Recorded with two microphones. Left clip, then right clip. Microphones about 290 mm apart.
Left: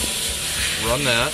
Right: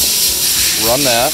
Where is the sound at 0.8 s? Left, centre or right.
Centre.